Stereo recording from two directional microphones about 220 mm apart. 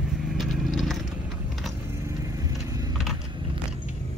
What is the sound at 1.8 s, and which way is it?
Vehicle, 15° right (ahead or behind).